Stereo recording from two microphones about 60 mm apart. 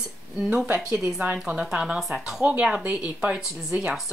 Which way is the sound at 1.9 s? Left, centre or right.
Centre.